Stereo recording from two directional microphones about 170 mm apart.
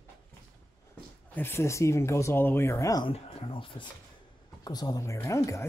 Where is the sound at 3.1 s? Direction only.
30° left (ahead or behind).